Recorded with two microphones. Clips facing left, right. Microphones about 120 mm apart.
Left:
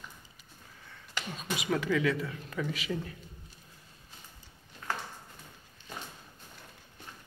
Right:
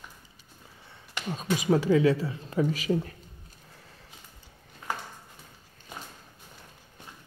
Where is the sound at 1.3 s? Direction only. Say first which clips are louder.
Right 8 dB; 40° right (ahead or behind).